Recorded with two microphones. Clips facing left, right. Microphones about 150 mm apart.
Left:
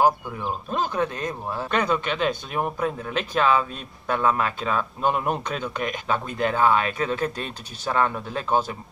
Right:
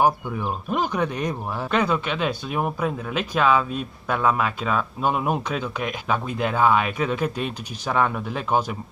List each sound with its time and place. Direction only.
0.7 s speech: 15° right (ahead or behind)
1.7 s speech: 5° right (ahead or behind)